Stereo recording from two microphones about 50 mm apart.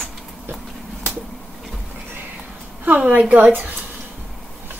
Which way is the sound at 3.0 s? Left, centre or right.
Right.